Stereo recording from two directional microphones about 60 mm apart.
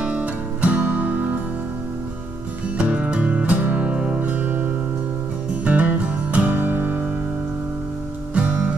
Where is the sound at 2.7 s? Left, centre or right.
Right.